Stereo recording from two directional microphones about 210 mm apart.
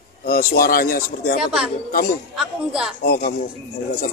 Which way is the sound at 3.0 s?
45° left (ahead or behind).